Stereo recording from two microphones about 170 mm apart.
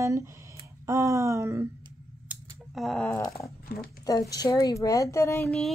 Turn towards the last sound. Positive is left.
turn(degrees=15)  # may be behind; listen again after turning